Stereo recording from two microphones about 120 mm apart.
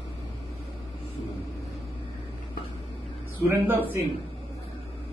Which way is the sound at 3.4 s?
15° right (ahead or behind).